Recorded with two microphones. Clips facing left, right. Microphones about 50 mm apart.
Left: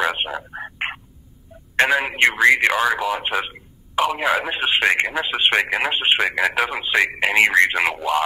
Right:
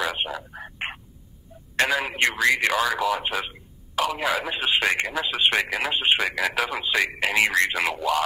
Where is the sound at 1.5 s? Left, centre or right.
Left.